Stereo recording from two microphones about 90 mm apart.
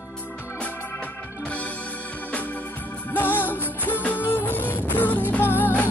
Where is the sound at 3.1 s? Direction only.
20° left (ahead or behind).